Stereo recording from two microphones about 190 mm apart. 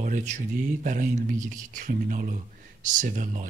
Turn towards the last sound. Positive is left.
turn(degrees=-40)  # may be behind; listen again after turning